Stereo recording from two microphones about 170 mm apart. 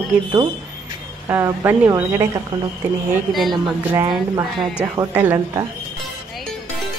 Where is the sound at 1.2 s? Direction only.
15° right (ahead or behind).